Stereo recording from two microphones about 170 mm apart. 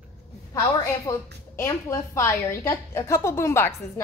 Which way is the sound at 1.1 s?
15° left (ahead or behind).